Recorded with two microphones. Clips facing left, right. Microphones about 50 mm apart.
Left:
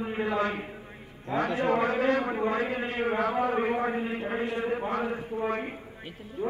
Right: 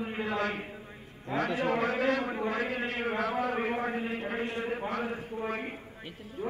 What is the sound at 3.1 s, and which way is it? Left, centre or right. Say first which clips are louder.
Speech: left 3 dB; left.